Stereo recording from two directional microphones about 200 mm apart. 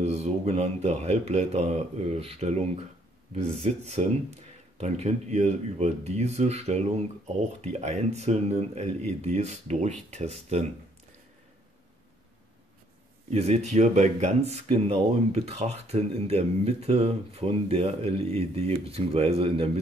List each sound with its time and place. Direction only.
0.0 s speech: 30° right (ahead or behind)
13.3 s speech: 30° right (ahead or behind)